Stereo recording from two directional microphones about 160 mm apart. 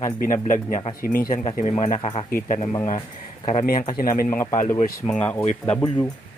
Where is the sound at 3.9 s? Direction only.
65° left (ahead or behind).